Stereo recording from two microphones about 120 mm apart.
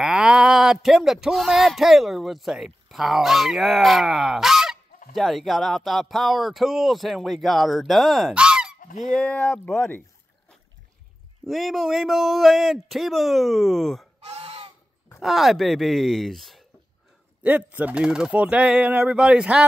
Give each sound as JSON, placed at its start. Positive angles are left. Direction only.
{"t": 0.0, "sound": "speech", "side_deg": -5}
{"t": 9.1, "sound": "speech", "side_deg": 10}
{"t": 11.4, "sound": "speech", "side_deg": 0}
{"t": 14.2, "sound": "honk", "side_deg": -55}
{"t": 15.1, "sound": "speech", "side_deg": 0}
{"t": 17.4, "sound": "speech", "side_deg": -10}